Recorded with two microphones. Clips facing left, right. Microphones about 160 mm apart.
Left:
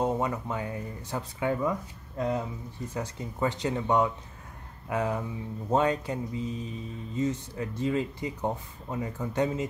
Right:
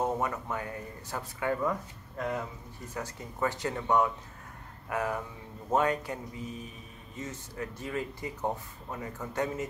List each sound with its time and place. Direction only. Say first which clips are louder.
0.0 s speech: left 3 dB; 20° left (ahead or behind)